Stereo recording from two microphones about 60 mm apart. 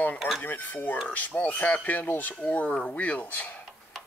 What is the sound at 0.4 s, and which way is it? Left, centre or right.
Speech, left.